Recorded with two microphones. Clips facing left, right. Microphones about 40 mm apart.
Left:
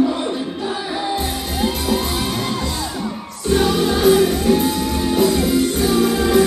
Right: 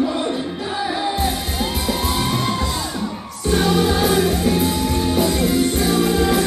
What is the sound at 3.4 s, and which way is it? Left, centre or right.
Music, centre.